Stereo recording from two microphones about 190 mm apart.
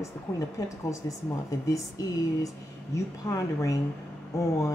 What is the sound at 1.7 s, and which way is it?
A woman's voice, 15° left (ahead or behind).